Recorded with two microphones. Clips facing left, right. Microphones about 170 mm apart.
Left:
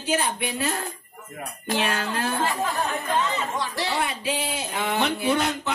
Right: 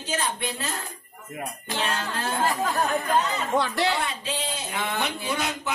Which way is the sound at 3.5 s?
60° right (ahead or behind).